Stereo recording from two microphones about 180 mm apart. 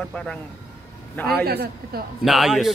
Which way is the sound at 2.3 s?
Centre (ahead or behind).